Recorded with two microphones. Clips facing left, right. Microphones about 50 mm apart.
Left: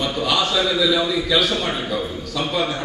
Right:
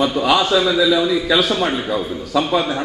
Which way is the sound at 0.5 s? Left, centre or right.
Centre.